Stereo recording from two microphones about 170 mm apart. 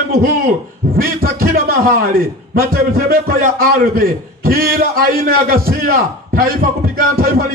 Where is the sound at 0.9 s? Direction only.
60° right (ahead or behind).